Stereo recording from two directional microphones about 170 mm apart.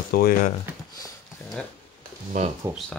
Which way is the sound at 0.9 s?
20° left (ahead or behind).